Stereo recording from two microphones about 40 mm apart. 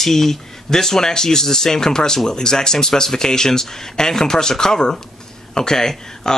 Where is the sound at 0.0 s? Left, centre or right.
Centre.